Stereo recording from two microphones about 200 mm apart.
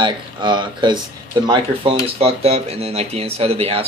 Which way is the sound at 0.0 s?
25° right (ahead or behind).